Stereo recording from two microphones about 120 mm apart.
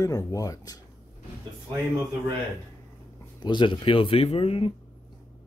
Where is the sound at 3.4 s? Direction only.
40° left (ahead or behind).